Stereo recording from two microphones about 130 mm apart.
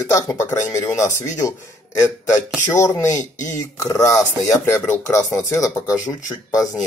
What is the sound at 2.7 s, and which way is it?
Speech, 25° left (ahead or behind).